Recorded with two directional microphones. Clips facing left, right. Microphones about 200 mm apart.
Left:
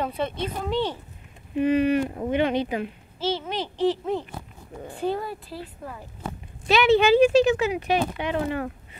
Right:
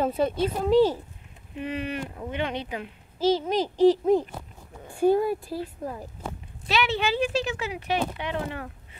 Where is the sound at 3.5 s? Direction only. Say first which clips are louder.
Right 5 dB; 40° right (ahead or behind).